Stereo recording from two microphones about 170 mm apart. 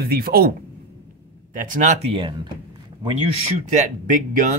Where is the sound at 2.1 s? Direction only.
30° right (ahead or behind); by 4.5 s 45° right (ahead or behind).